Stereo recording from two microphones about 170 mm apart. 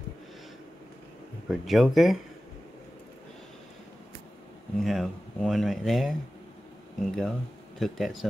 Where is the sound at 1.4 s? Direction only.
Centre (ahead or behind).